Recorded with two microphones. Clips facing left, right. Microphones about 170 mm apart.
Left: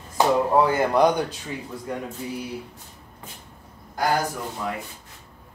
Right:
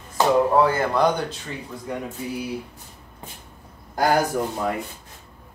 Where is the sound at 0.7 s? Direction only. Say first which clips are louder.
Left 1 dB; 15° left (ahead or behind).